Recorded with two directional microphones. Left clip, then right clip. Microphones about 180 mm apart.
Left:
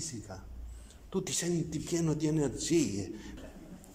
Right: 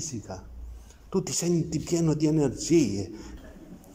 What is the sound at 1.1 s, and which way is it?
A woman's voice, 5° right (ahead or behind).